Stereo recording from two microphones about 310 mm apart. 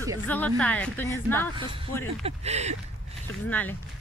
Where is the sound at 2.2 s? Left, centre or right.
Right.